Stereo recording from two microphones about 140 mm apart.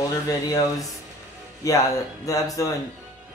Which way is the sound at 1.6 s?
25° left (ahead or behind).